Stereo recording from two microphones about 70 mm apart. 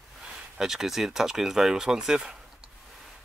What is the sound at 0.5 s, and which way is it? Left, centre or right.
Speech, centre.